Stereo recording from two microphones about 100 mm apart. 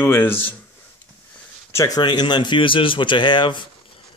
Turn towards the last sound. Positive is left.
turn(degrees=50)  # may be behind; listen again after turning